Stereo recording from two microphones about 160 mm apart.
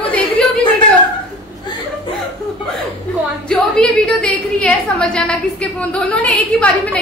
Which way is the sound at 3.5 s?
5° left (ahead or behind).